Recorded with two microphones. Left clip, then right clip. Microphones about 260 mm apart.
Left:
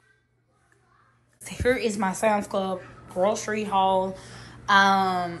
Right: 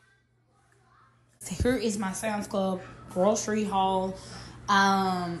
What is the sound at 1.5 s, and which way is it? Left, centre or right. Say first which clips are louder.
Speech: left 4 dB; right.